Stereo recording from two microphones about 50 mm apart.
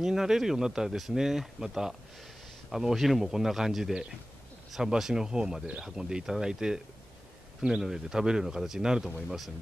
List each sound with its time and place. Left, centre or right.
0.0 s speech: centre